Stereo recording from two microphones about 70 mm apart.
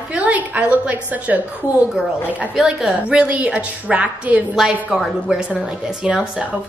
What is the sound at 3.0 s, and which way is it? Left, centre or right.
A woman's voice, centre.